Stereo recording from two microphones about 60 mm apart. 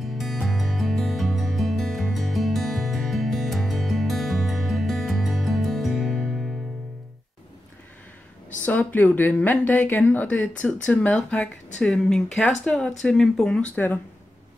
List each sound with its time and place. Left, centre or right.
0.0 s music: centre
8.6 s speech: left